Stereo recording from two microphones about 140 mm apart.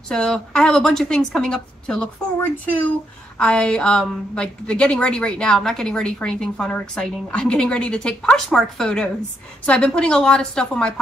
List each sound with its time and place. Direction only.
0.1 s a woman's voice: 5° left (ahead or behind)
3.3 s a woman's voice: 5° left (ahead or behind)